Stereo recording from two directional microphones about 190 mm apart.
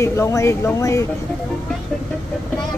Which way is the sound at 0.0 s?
15° left (ahead or behind).